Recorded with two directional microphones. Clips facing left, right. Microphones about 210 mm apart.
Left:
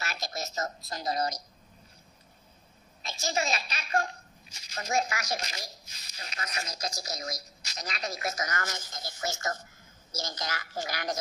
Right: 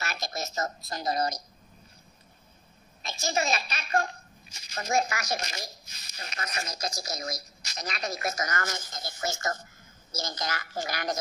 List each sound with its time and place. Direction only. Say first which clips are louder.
0.0 s a woman's voice: right 2 dB; 50° right (ahead or behind)
3.0 s a woman's voice: right 2 dB; 50° right (ahead or behind)